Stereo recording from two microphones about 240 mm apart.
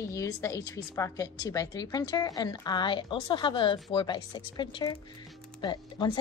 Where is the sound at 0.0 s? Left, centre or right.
Centre.